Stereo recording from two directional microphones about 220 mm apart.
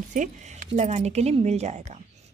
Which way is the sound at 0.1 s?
35° right (ahead or behind).